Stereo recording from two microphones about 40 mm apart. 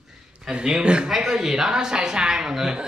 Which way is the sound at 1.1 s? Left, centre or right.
Centre.